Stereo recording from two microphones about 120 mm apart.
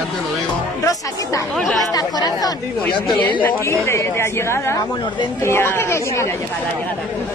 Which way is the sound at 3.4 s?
20° left (ahead or behind).